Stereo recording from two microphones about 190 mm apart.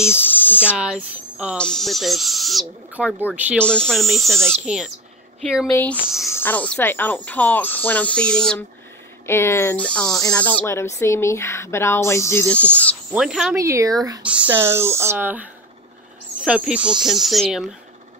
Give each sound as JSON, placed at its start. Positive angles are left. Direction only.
{"t": 0.0, "sound": "a sound", "side_deg": 10}
{"t": 0.7, "sound": "owl", "side_deg": -5}
{"t": 3.5, "sound": "owl", "side_deg": 5}
{"t": 5.7, "sound": "speech", "side_deg": 15}
{"t": 13.1, "sound": "owl", "side_deg": -5}
{"t": 13.6, "sound": "speech", "side_deg": -15}
{"t": 16.4, "sound": "owl", "side_deg": -5}